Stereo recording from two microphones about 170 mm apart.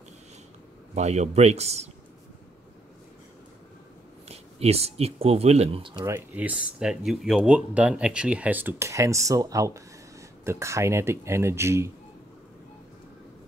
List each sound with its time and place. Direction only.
0.9 s speech: 40° right (ahead or behind)
4.3 s speech: 35° right (ahead or behind)
6.0 s speech: 10° right (ahead or behind)